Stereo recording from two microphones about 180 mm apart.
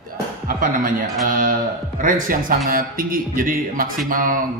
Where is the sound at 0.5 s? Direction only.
50° right (ahead or behind).